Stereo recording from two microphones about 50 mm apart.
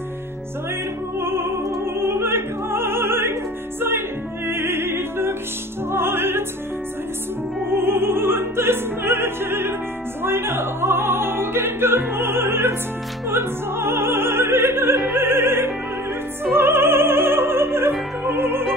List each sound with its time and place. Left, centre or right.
1.2 s music: right
2.0 s opera: right
4.5 s music: right
7.7 s opera: right
13.3 s music: right